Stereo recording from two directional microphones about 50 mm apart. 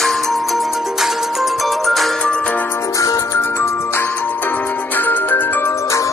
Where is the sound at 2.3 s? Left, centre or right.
Left.